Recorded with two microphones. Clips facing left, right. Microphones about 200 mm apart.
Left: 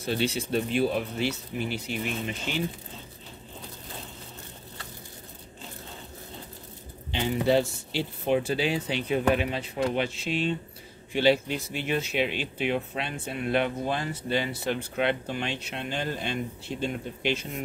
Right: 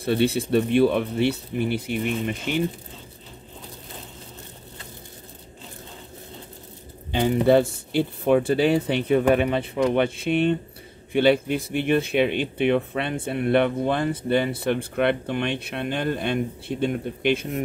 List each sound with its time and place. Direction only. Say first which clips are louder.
0.0 s speech: right 6 dB; 60° right (ahead or behind)
7.1 s speech: right 6 dB; 50° right (ahead or behind)